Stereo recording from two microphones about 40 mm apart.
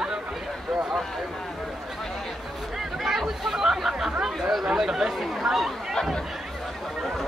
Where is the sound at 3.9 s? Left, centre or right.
Centre.